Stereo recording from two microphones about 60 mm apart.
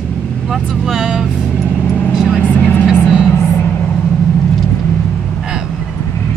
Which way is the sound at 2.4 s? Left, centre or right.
Left.